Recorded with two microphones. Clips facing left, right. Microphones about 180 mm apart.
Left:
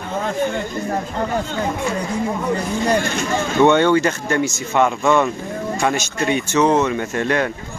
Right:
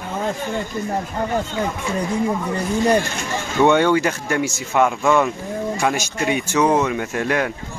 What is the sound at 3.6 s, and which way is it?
Speech, 10° right (ahead or behind).